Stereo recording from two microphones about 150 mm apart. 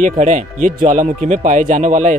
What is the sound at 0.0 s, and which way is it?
Speech, 55° right (ahead or behind).